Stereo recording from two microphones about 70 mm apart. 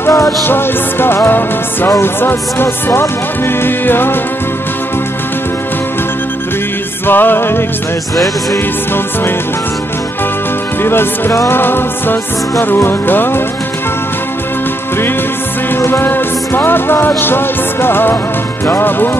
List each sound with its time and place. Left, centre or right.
0.1 s music: left
0.5 s music: left
7.1 s music: left
10.8 s music: left
15.7 s music: left